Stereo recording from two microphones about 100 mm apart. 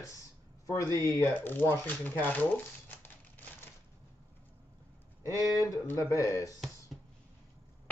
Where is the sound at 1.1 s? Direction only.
20° left (ahead or behind).